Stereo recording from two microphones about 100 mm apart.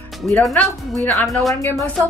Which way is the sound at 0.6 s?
15° left (ahead or behind).